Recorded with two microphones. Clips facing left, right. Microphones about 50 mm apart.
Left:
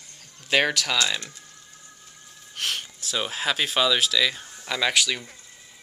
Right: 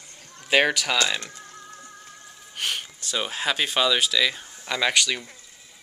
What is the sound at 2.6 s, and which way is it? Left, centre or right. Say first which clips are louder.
Speech: even; centre.